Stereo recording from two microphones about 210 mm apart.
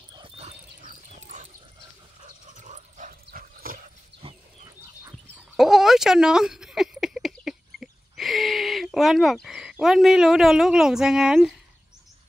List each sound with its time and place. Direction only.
0.1 s dog: 25° right (ahead or behind); by 3.9 s 45° right (ahead or behind)
4.2 s dog: 25° right (ahead or behind)
4.6 s dog: 15° right (ahead or behind)
5.6 s a sound: centre (ahead or behind)